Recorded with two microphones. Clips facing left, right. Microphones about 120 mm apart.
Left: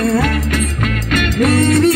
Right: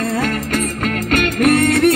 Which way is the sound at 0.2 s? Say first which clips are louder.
Left 1 dB; 40° right (ahead or behind).